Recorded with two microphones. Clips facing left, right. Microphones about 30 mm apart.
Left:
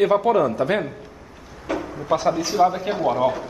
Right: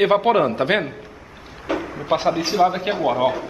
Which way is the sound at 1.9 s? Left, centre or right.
Right.